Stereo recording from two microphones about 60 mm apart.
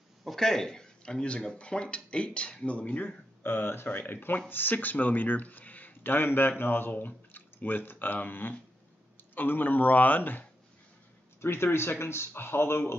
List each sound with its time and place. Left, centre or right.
0.2 s speech: centre; by 3.1 s left
3.4 s speech: left
11.4 s speech: left